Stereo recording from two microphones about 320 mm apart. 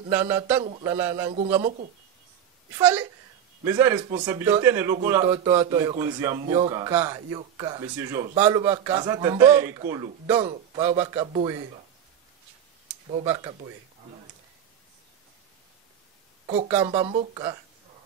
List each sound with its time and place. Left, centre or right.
0.1 s a man's voice: centre
2.8 s a woman's voice: centre
13.3 s a man's voice: centre
16.4 s a woman's voice: centre